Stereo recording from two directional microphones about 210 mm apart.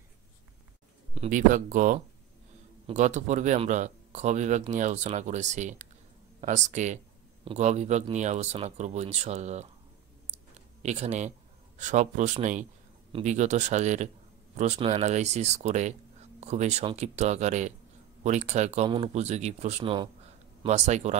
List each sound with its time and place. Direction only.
1.1 s speech: 35° right (ahead or behind)
10.2 s clicking: 30° right (ahead or behind)
13.1 s speech: 35° right (ahead or behind)